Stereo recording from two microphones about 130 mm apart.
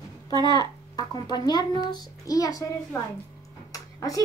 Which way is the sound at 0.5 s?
30° left (ahead or behind).